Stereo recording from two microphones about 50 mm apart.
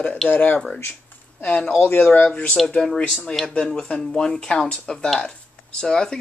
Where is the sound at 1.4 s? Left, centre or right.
Left.